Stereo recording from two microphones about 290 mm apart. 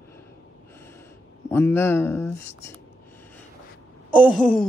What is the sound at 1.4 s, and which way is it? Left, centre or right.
Speech, centre.